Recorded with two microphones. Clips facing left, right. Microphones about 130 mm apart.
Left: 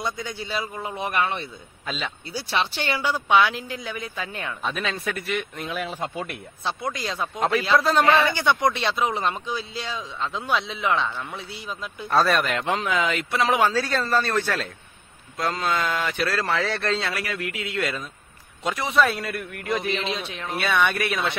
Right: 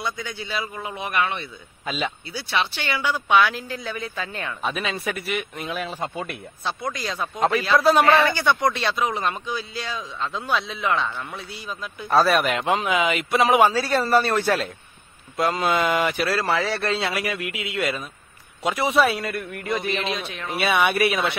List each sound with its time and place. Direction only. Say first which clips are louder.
0.0 s a man's voice: even; 35° left (ahead or behind)
1.9 s speech: right 4 dB; 5° right (ahead or behind)
2.3 s speech: left 2 dB; 35° left (ahead or behind); by 4.6 s 15° left (ahead or behind)
4.6 s speech: right 1 dB; 10° right (ahead or behind)
6.6 s speech: even; 25° left (ahead or behind)
7.3 s a man's voice: right 1 dB; centre (ahead or behind)
8.4 s speech: even; 20° left (ahead or behind)
12.1 s a man's voice: right 2 dB; centre (ahead or behind)
12.4 s a man's voice: right 3 dB; 15° right (ahead or behind)
20.1 s speech: right 1 dB; 25° left (ahead or behind)
20.4 s speech: right 2 dB; 10° right (ahead or behind)